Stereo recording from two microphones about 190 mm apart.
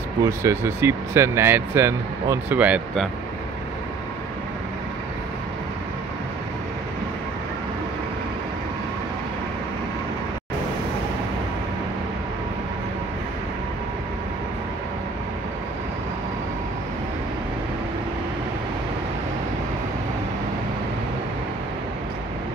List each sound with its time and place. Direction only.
0.2 s speech: 15° right (ahead or behind)